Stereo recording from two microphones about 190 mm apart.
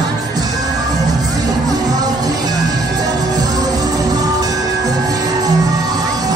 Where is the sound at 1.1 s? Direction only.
20° right (ahead or behind).